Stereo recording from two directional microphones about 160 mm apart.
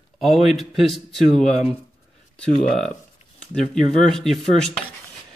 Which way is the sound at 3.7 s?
5° left (ahead or behind).